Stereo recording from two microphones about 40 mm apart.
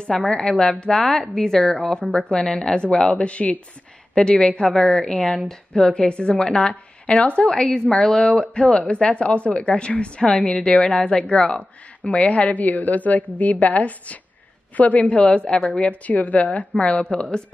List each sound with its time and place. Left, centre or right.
0.0 s a woman's voice: left
7.7 s a woman's voice: left
8.7 s a woman's voice: left
15.2 s a woman's voice: left
15.7 s a woman's voice: left